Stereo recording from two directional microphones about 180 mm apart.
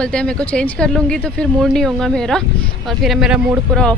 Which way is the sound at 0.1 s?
5° left (ahead or behind).